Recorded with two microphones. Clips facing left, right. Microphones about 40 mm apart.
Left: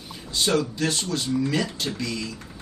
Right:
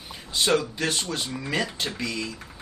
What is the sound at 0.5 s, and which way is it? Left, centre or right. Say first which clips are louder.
Speech: left 1 dB; right.